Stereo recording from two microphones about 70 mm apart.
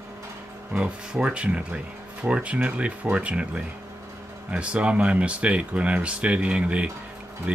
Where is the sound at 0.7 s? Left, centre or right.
Centre.